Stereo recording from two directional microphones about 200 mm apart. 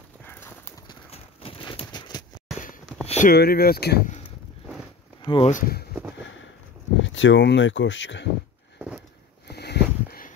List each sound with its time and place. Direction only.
0.2 s clip-clop: 10° left (ahead or behind)
0.8 s clip-clop: 25° left (ahead or behind)
3.1 s a sound: 35° left (ahead or behind)
3.3 s speech: 50° left (ahead or behind)
5.2 s speech: 25° left (ahead or behind)
5.5 s speech: 45° left (ahead or behind)
7.0 s speech: 70° left (ahead or behind)
8.7 s a sound: 5° right (ahead or behind)
9.5 s a sound: 55° left (ahead or behind)